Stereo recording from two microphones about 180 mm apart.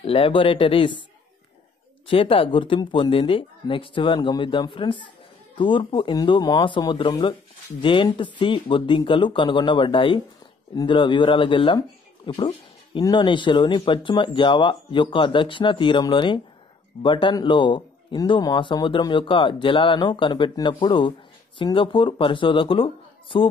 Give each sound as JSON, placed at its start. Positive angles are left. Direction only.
{"t": 0.0, "sound": "speech", "side_deg": 30}
{"t": 2.0, "sound": "speech", "side_deg": 30}